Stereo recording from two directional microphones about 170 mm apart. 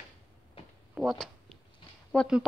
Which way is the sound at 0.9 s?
Centre (ahead or behind).